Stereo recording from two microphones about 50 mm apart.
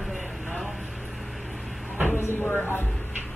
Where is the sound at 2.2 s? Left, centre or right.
Left.